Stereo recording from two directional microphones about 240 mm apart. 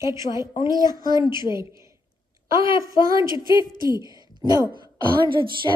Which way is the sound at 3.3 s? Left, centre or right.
Centre.